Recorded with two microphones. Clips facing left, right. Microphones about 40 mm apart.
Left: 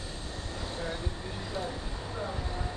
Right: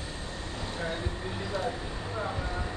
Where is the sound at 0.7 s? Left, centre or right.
Right.